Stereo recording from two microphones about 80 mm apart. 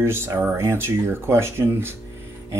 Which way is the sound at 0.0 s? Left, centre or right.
Right.